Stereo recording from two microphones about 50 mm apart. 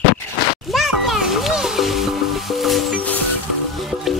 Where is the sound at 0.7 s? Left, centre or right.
Centre.